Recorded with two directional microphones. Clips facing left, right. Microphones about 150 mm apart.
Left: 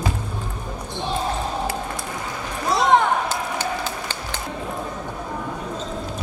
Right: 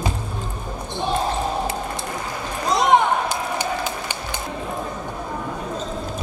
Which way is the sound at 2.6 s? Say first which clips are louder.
Right 1 dB; 15° right (ahead or behind).